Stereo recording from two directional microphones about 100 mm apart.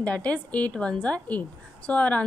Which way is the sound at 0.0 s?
10° left (ahead or behind).